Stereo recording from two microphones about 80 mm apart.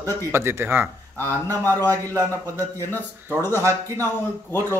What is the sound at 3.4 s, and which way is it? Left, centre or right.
Speech, left.